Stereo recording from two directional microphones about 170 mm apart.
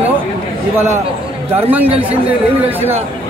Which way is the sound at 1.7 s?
10° right (ahead or behind).